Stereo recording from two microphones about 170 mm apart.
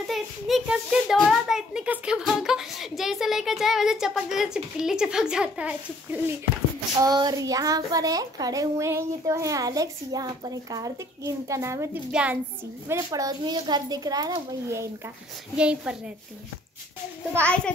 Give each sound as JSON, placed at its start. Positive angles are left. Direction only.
{"t": 0.0, "sound": "speech", "side_deg": 0}
{"t": 7.0, "sound": "a woman's voice", "side_deg": -25}
{"t": 12.8, "sound": "speech", "side_deg": -20}
{"t": 15.5, "sound": "speech", "side_deg": -5}